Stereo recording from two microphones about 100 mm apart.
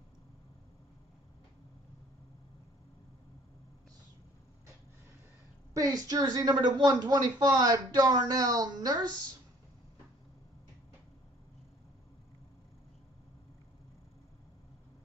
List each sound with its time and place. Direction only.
5.7 s speech: 35° right (ahead or behind)